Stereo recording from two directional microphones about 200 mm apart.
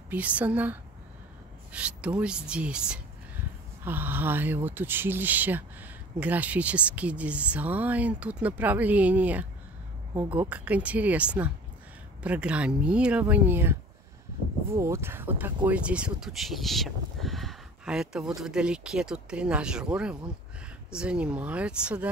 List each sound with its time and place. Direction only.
0.1 s speech: 5° right (ahead or behind)
14.8 s speech: 15° right (ahead or behind)